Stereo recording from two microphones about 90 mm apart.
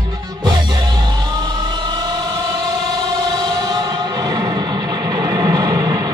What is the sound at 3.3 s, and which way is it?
Music, 50° right (ahead or behind).